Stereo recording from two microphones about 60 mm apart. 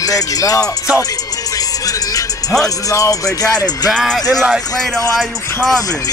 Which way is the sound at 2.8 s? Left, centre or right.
Left.